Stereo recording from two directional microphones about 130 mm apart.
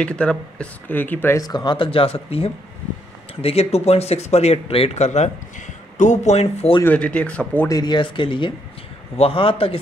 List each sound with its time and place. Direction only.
0.0 s speech: 10° left (ahead or behind)
1.4 s speech: 35° left (ahead or behind); by 6.8 s 55° left (ahead or behind)
6.8 s speech: 10° left (ahead or behind)
7.6 s speech: 30° left (ahead or behind)